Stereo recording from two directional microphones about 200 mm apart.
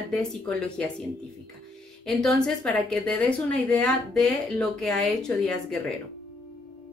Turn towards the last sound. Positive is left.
turn(degrees=5)  # may be behind; listen again after turning